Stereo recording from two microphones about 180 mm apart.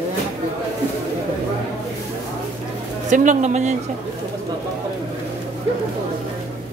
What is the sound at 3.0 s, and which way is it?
Speech, 45° right (ahead or behind).